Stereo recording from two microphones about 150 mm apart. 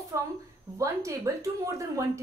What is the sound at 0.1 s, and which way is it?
A woman's voice, 20° right (ahead or behind).